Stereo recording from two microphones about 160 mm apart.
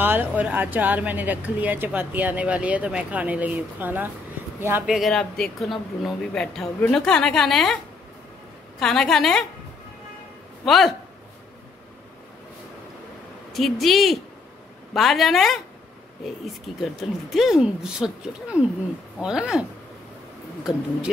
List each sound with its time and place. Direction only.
0.0 s speech: 10° right (ahead or behind)
4.9 s speech: centre (ahead or behind)
10.6 s a man's voice: centre (ahead or behind)
13.5 s speech: centre (ahead or behind)
16.7 s speech: centre (ahead or behind)